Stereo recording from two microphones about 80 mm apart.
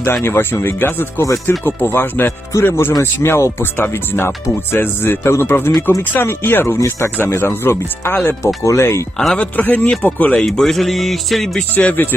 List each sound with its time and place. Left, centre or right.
0.0 s speech: left
8.6 s speech: left
9.2 s speech: centre
9.6 s speech: left
10.4 s speech: centre
11.7 s speech: left